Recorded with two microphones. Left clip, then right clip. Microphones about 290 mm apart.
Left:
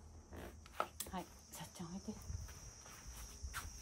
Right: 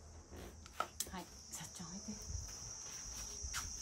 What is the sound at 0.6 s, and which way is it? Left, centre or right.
Chopping, left.